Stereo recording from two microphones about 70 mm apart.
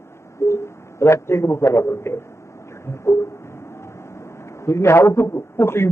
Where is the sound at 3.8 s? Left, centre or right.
Left.